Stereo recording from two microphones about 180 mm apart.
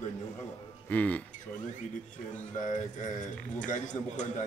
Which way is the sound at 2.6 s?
45° left (ahead or behind).